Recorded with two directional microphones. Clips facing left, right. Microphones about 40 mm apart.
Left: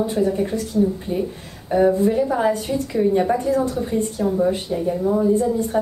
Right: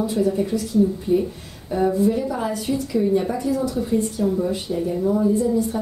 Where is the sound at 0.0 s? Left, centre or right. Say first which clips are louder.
Left 1 dB; left.